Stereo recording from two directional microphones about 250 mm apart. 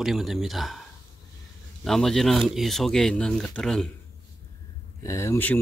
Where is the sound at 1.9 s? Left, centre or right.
Centre.